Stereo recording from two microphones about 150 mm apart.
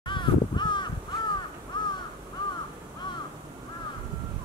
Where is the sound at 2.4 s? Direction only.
30° left (ahead or behind).